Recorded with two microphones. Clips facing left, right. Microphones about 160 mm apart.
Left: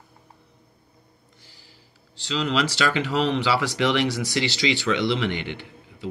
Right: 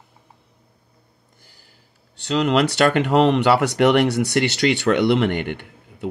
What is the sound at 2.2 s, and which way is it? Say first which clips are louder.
Speech: right 6 dB; 60° right (ahead or behind).